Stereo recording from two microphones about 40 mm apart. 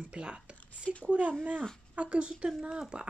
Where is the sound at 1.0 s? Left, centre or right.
Right.